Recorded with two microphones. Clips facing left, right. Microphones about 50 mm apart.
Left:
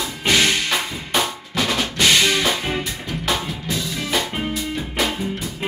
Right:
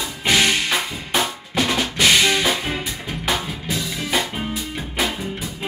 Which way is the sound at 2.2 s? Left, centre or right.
Centre.